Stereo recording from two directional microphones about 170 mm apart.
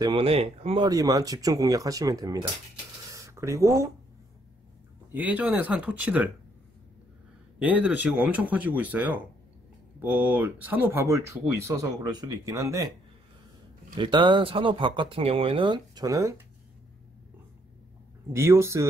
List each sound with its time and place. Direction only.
0.0 s speech: 35° right (ahead or behind)
0.8 s speech: 20° right (ahead or behind)
3.1 s a sound: 20° right (ahead or behind)
5.1 s speech: 10° right (ahead or behind)
7.5 s speech: 10° right (ahead or behind)
13.9 s speech: 30° right (ahead or behind)
18.3 s speech: 15° right (ahead or behind)